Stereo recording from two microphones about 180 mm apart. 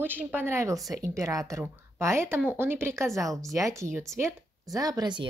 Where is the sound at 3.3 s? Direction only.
Centre (ahead or behind).